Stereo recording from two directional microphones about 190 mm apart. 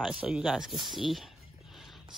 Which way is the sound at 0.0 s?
5° right (ahead or behind).